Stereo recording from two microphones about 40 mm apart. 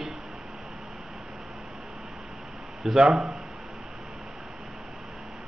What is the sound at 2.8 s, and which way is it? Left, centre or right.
Speech, centre.